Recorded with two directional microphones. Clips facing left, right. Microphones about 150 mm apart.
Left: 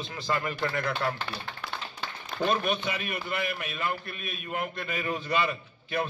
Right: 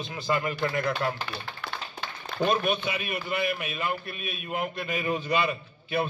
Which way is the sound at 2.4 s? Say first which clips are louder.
Right 2 dB; 10° right (ahead or behind).